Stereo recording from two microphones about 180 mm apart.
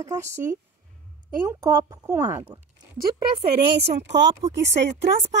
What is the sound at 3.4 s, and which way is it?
Speech, 65° right (ahead or behind).